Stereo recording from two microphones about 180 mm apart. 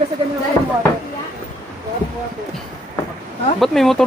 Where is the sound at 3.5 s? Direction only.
Centre (ahead or behind).